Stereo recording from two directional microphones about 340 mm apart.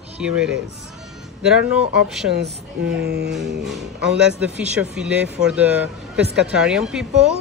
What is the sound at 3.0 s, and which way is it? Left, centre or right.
Music, right.